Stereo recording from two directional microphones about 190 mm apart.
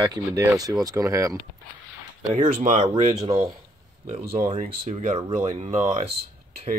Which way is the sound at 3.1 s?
20° right (ahead or behind).